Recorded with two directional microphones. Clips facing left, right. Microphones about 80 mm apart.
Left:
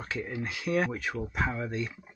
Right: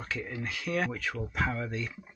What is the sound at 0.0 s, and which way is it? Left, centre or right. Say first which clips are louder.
Speech: left 2 dB; centre.